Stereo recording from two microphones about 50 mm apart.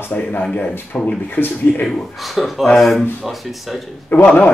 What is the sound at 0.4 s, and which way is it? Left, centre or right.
Speech, left.